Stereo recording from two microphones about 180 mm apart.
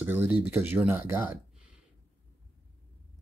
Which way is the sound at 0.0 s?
10° right (ahead or behind).